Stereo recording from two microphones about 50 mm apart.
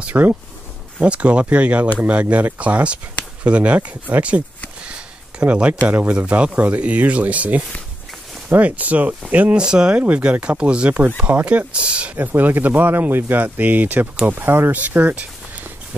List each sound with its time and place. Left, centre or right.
0.1 s speech: right
1.0 s speech: right
9.6 s speech: centre
9.9 s speech: right
12.2 s speech: right
14.7 s a sound: right